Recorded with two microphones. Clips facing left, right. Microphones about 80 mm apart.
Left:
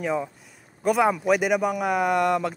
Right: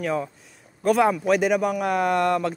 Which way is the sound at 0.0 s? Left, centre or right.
Centre.